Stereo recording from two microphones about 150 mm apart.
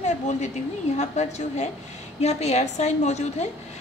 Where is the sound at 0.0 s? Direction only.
50° left (ahead or behind).